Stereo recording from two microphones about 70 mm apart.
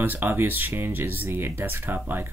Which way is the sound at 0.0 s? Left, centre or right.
Right.